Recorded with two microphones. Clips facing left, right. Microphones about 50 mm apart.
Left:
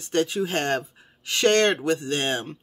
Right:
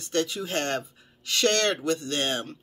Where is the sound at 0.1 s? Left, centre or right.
Left.